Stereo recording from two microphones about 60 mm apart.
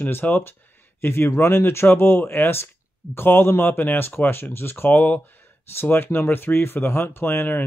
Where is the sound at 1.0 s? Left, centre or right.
Left.